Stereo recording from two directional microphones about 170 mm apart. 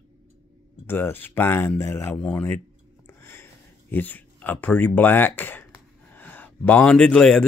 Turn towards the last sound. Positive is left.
turn(degrees=5)  # may be behind; listen again after turning